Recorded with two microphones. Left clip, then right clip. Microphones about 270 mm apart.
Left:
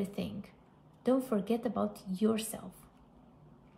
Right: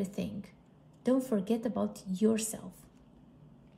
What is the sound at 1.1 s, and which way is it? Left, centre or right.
Speech, centre.